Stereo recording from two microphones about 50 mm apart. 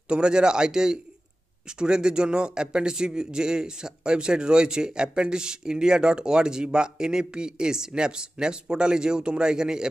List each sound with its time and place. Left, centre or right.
0.1 s a man's voice: centre